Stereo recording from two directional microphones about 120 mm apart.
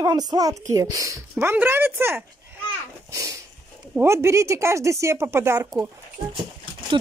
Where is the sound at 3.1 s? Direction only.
25° right (ahead or behind).